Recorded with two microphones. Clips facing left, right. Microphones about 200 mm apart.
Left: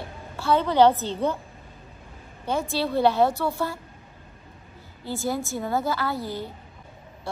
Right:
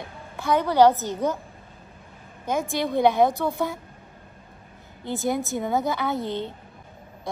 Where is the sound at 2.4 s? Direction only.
15° right (ahead or behind).